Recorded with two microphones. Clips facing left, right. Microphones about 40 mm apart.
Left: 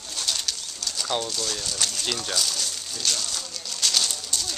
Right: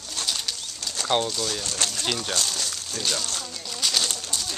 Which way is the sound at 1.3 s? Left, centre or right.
Centre.